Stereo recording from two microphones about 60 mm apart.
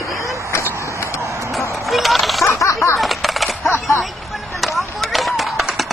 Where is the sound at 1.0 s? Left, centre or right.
Left.